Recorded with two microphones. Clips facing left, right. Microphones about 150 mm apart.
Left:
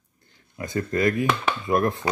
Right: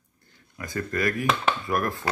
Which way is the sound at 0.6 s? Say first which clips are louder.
Left 4 dB; 25° left (ahead or behind).